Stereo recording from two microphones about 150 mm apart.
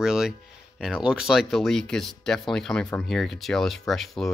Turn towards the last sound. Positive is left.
turn(degrees=0)  # may be behind; listen again after turning